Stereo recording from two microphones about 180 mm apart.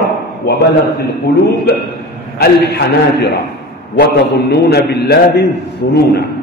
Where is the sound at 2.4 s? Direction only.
60° left (ahead or behind).